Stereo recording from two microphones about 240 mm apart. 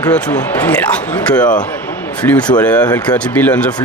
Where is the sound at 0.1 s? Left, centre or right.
Centre.